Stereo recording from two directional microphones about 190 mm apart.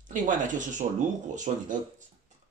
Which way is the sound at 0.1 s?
40° right (ahead or behind).